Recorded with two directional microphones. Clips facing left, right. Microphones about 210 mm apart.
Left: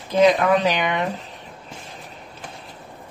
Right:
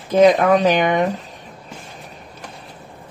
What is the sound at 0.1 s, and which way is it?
Speech, 45° right (ahead or behind).